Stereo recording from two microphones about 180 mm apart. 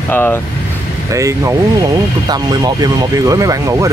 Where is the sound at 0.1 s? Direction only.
10° left (ahead or behind).